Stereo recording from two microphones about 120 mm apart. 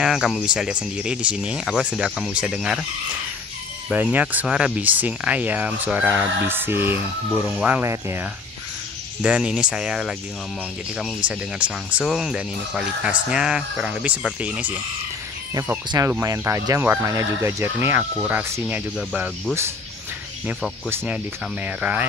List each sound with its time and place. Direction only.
0.0 s speech: 5° right (ahead or behind)
3.9 s speech: 15° right (ahead or behind)
9.2 s speech: 5° right (ahead or behind)
16.1 s speech: 25° right (ahead or behind)
18.9 s speech: 10° right (ahead or behind)
20.9 s speech: 20° right (ahead or behind)